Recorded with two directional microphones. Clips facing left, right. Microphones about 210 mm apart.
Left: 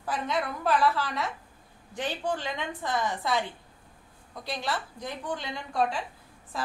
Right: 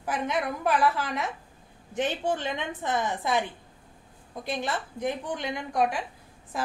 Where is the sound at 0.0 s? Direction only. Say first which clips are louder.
Right 2 dB; 20° right (ahead or behind).